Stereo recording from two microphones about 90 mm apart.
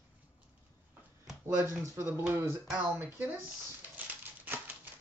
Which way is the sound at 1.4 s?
30° right (ahead or behind).